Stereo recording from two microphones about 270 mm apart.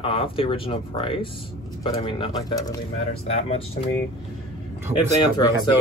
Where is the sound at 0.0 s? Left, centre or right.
Centre.